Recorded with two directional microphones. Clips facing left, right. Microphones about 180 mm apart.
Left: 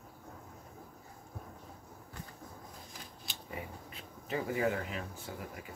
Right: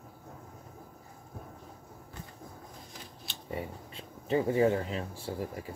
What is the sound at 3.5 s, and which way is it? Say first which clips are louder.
Speech: right 6 dB; 30° right (ahead or behind).